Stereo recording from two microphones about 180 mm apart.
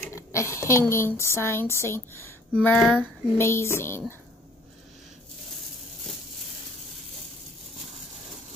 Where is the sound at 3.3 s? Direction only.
15° left (ahead or behind).